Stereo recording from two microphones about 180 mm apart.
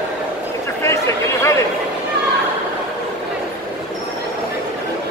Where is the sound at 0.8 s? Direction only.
15° left (ahead or behind).